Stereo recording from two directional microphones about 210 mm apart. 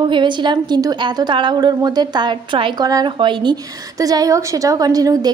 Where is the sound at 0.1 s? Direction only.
20° right (ahead or behind).